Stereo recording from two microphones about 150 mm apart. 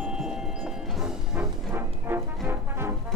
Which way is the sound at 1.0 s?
10° right (ahead or behind).